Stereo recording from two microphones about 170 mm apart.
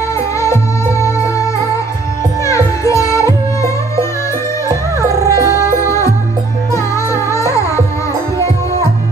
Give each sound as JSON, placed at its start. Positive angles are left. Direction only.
{"t": 0.4, "sound": "music", "side_deg": 15}
{"t": 4.6, "sound": "music", "side_deg": -20}
{"t": 5.9, "sound": "music", "side_deg": 20}